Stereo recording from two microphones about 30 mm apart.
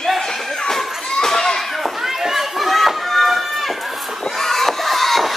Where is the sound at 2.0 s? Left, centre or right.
Centre.